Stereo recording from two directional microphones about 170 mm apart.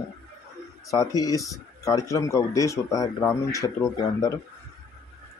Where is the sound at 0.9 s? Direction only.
20° left (ahead or behind).